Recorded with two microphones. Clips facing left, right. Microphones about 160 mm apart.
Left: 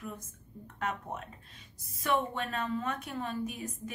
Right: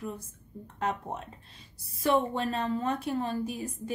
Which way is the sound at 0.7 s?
30° right (ahead or behind).